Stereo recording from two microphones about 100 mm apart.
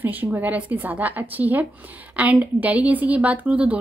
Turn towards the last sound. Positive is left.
turn(degrees=-10)  # may be behind; listen again after turning